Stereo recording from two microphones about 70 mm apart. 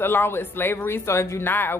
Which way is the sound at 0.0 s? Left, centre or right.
Left.